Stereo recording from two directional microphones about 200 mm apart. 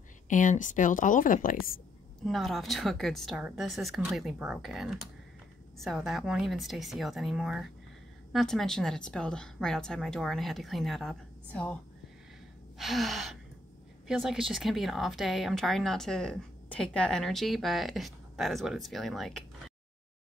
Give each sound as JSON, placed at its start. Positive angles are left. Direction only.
{"t": 0.3, "sound": "speech", "side_deg": 40}
{"t": 2.2, "sound": "speech", "side_deg": 0}